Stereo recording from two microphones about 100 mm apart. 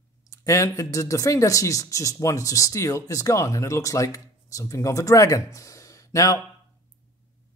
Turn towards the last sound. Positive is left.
turn(degrees=30)  # may be behind; listen again after turning